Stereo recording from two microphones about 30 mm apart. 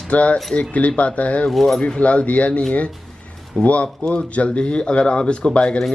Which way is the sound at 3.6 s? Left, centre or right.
Left.